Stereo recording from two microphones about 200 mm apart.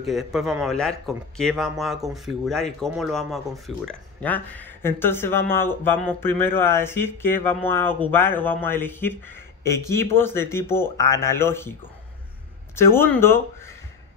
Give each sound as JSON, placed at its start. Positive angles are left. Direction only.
{"t": 0.0, "sound": "speech", "side_deg": 0}
{"t": 12.7, "sound": "speech", "side_deg": 10}